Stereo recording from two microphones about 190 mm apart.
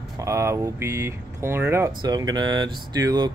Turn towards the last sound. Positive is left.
turn(degrees=-20)  # may be behind; listen again after turning